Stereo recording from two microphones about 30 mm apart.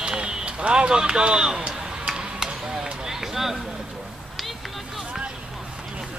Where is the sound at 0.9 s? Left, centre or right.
Right.